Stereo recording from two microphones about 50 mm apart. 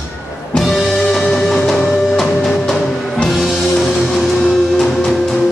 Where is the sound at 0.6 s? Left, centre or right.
Centre.